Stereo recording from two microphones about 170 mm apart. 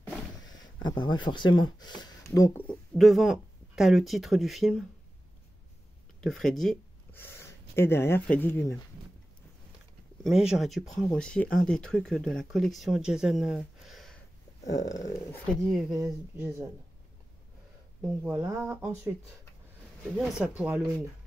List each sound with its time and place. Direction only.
0.7 s speech: 25° left (ahead or behind)
2.9 s speech: centre (ahead or behind)
6.2 s speech: centre (ahead or behind)
10.2 s speech: 5° right (ahead or behind)
14.7 s speech: 20° left (ahead or behind)
16.0 s speech: 10° right (ahead or behind)
18.2 s speech: 10° right (ahead or behind)
20.2 s speech: 5° right (ahead or behind)